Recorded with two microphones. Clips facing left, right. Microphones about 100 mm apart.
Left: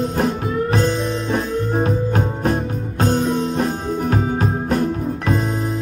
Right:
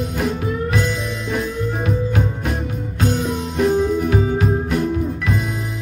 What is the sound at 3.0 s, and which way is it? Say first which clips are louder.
Music: left 3 dB; 35° left (ahead or behind).